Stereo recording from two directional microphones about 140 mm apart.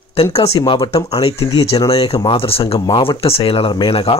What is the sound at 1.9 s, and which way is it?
Speech, 45° left (ahead or behind).